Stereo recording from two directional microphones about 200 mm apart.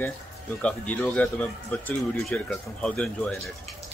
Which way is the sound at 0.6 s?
5° left (ahead or behind).